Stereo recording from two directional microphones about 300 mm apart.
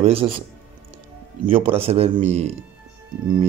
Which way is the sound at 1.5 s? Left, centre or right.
Centre.